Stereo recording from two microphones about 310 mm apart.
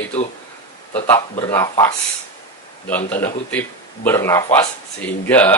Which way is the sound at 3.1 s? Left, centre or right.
Centre.